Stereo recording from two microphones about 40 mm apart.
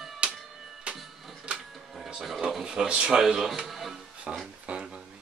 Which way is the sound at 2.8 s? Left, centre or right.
Right.